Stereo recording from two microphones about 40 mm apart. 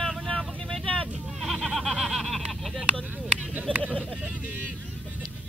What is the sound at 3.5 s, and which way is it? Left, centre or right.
Speech, right.